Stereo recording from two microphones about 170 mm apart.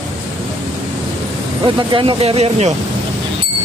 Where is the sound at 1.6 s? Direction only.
25° right (ahead or behind).